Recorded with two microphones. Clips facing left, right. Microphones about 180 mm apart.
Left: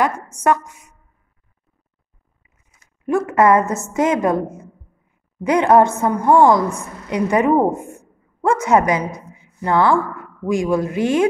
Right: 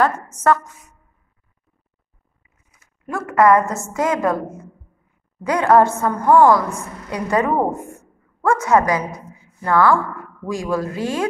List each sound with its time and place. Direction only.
0.0 s a woman's voice: 15° left (ahead or behind)
3.1 s a woman's voice: 20° left (ahead or behind)